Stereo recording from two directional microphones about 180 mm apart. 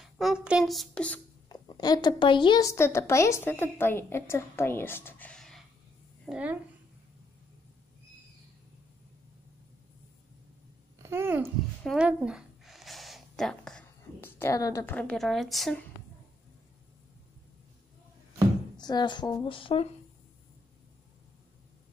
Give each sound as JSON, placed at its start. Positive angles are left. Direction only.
{"t": 0.0, "sound": "a child's voice", "side_deg": 0}
{"t": 1.5, "sound": "speech", "side_deg": 20}
{"t": 6.2, "sound": "a woman's voice", "side_deg": -5}
{"t": 11.0, "sound": "babbling", "side_deg": -15}
{"t": 11.8, "sound": "a sound", "side_deg": -5}
{"t": 15.0, "sound": "a woman's voice", "side_deg": 5}
{"t": 18.8, "sound": "a woman's voice", "side_deg": 25}